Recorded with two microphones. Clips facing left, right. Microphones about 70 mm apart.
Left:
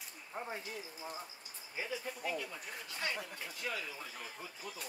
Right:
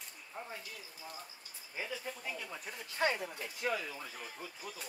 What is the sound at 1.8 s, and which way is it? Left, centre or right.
Speech, centre.